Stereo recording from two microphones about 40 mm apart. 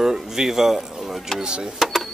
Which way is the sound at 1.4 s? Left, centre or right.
Right.